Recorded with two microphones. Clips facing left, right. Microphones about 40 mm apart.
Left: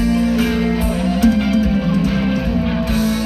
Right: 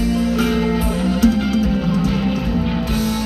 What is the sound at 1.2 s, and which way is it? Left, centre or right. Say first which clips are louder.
Music: left 2 dB; centre.